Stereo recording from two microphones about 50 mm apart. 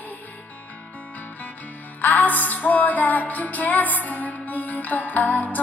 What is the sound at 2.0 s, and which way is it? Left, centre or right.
Music, left.